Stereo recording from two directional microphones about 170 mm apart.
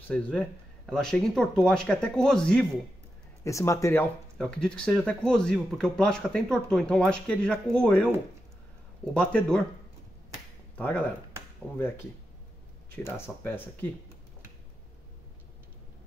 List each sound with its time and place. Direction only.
0.1 s speech: 5° left (ahead or behind)
3.4 s speech: 20° left (ahead or behind)
4.4 s speech: 5° left (ahead or behind)
9.1 s speech: 5° left (ahead or behind)
10.8 s speech: 10° left (ahead or behind)